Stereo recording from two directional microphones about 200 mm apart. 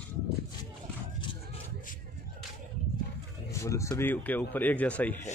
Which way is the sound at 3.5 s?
15° left (ahead or behind).